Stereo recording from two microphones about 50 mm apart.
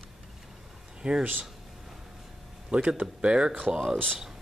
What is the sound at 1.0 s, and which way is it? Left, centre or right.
Speech, centre.